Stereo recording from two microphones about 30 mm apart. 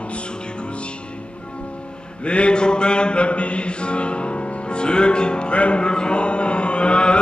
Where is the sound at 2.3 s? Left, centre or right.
Left.